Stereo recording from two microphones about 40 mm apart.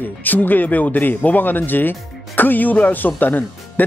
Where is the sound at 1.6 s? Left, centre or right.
Left.